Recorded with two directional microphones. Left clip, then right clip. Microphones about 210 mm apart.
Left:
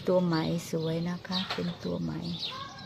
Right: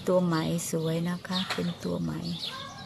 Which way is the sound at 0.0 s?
5° right (ahead or behind).